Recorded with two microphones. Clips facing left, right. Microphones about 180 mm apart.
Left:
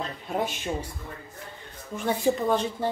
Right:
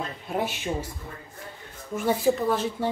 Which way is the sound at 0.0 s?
5° right (ahead or behind).